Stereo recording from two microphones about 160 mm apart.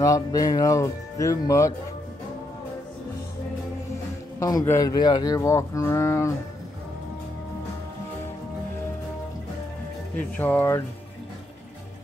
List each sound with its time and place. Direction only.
0.0 s speech: 20° left (ahead or behind)
4.4 s speech: 20° left (ahead or behind)
10.1 s speech: 10° left (ahead or behind)